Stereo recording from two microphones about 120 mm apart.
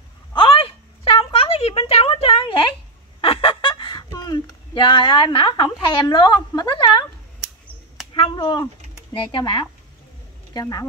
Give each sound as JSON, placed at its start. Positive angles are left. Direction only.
{"t": 0.3, "sound": "a sound", "side_deg": 45}
{"t": 3.2, "sound": "fowl", "side_deg": 50}
{"t": 8.1, "sound": "speech", "side_deg": 45}
{"t": 10.5, "sound": "speech", "side_deg": 30}